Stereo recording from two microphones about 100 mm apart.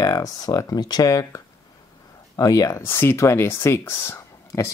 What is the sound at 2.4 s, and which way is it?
Speech, 35° left (ahead or behind).